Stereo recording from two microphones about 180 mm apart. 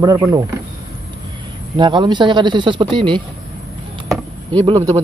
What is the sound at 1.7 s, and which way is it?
Speech, 25° right (ahead or behind).